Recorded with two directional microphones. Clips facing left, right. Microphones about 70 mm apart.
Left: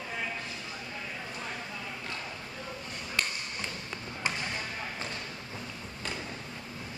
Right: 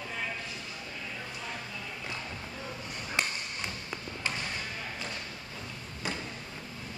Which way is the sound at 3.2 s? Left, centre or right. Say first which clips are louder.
Right 1 dB; centre.